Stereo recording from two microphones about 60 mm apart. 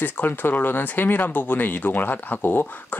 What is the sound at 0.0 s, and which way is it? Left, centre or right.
Speech, left.